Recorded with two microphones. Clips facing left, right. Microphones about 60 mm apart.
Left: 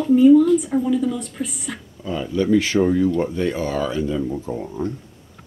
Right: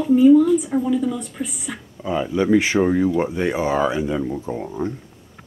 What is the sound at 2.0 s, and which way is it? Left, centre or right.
Speech, right.